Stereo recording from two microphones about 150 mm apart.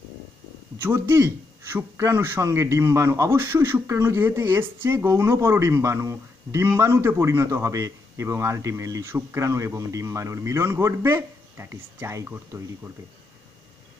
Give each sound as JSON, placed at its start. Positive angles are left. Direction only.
{"t": 0.7, "sound": "a man's voice", "side_deg": -15}